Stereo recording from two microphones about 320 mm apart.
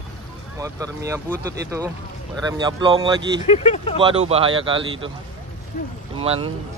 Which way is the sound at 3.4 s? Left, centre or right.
Left.